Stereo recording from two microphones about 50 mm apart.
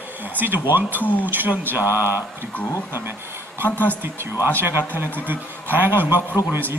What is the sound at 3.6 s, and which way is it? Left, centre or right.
Speech, left.